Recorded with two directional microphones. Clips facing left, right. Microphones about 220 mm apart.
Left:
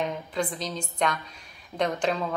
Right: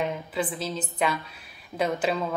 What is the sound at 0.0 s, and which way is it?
Speech, 5° right (ahead or behind).